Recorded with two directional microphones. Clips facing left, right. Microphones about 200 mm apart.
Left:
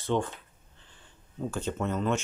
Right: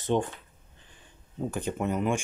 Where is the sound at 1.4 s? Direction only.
15° right (ahead or behind).